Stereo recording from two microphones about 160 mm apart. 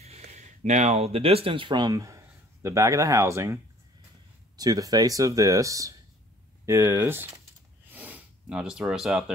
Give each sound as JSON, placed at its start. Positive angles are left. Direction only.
{"t": 0.3, "sound": "speech", "side_deg": -45}
{"t": 4.6, "sound": "speech", "side_deg": -25}
{"t": 7.9, "sound": "snort", "side_deg": -10}